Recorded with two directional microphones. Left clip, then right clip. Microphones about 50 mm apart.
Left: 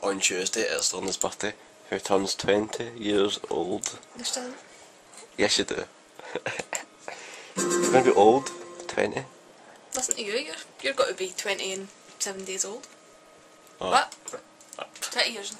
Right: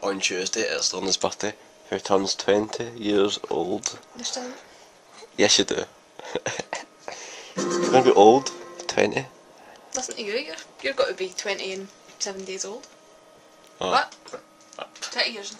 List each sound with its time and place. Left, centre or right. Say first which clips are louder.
0.0 s speech: right 1 dB; centre
1.0 s speech: right 4 dB; right
1.9 s speech: right 3 dB; centre
3.8 s speech: right 2 dB; centre
5.3 s a sound: right 5 dB; right
7.5 s speech: right 1 dB; left
7.9 s speech: right 4 dB; right
9.2 s speech: right 5 dB; right
10.1 s speech: right 2 dB; centre
12.2 s speech: right 1 dB; left
13.8 s speech: right 1 dB; right
14.3 s a sound: right 1 dB; centre
15.1 s speech: right 1 dB; left